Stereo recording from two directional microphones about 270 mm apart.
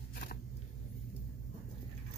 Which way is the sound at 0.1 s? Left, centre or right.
Left.